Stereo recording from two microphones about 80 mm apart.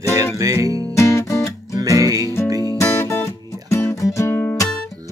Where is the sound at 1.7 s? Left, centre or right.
Right.